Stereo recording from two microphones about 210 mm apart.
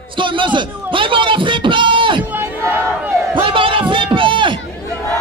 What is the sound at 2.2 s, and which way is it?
Battle cry, 10° right (ahead or behind).